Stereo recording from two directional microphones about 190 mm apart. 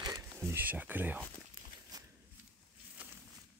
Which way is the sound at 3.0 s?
10° right (ahead or behind).